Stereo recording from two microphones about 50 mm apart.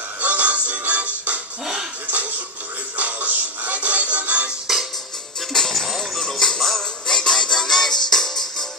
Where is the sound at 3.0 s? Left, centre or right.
Right.